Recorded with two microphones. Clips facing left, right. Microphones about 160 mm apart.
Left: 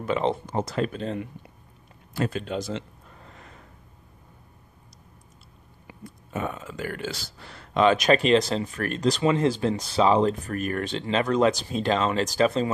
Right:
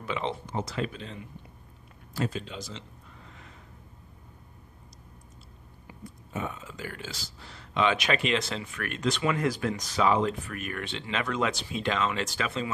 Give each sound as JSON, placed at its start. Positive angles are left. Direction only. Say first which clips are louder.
{"t": 0.0, "sound": "speech", "louder": "left 7 dB", "side_deg": 45}
{"t": 5.9, "sound": "speech", "louder": "left 2 dB", "side_deg": 60}